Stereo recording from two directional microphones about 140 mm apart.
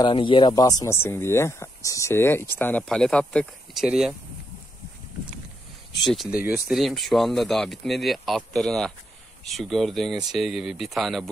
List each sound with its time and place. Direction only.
0.0 s speech: 35° left (ahead or behind); by 3.8 s 5° left (ahead or behind)
3.8 s speech: 5° right (ahead or behind)
6.0 s speech: centre (ahead or behind)
6.4 s speech: 10° right (ahead or behind)
6.8 s speech: centre (ahead or behind)